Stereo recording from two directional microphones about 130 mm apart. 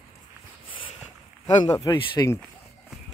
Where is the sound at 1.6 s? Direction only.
25° left (ahead or behind).